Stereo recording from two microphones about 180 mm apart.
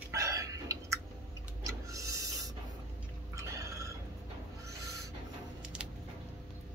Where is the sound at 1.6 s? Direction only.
20° right (ahead or behind).